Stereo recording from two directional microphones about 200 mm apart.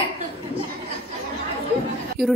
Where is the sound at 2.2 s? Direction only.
50° right (ahead or behind).